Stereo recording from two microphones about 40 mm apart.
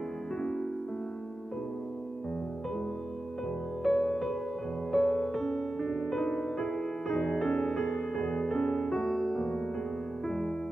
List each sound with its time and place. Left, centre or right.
0.4 s music: left
3.8 s music: centre